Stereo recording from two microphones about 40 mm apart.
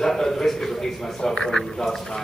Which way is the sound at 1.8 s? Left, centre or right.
Centre.